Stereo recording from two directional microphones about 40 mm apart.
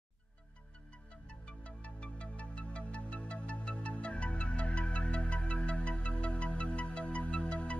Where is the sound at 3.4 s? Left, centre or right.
Left.